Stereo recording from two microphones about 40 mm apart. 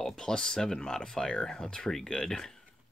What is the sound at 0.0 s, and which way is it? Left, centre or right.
Speech, centre.